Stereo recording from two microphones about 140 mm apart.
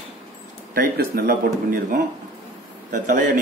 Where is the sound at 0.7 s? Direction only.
90° right.